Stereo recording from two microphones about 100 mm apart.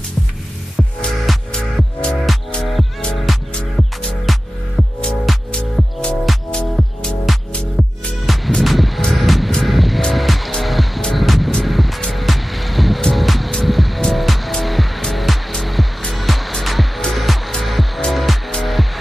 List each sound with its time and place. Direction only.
0.7 s music: 5° left (ahead or behind)